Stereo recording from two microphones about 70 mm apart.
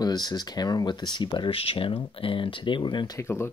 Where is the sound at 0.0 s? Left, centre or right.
Left.